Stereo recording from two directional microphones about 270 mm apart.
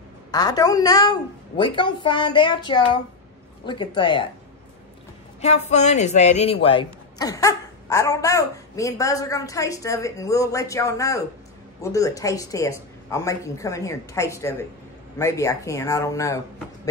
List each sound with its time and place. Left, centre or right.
0.3 s a man's voice: centre
5.4 s a man's voice: left